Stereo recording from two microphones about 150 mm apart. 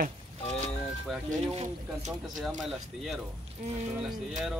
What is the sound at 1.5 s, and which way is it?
Speech, 50° right (ahead or behind).